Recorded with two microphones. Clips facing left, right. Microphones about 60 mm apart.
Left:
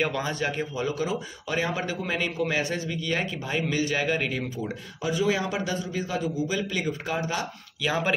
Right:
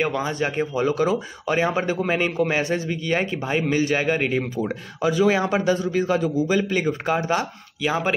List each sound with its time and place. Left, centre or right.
0.0 s speech: centre
0.3 s speech: right
0.8 s a man's voice: right
1.6 s a man's voice: right
5.0 s a man's voice: right
7.8 s speech: centre